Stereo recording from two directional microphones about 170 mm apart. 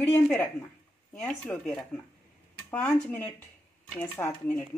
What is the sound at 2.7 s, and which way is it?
Speech, 5° left (ahead or behind).